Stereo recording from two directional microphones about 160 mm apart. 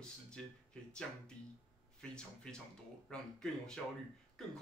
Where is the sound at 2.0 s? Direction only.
5° left (ahead or behind).